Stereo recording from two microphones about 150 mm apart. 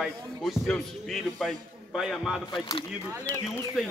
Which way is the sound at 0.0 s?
Centre (ahead or behind).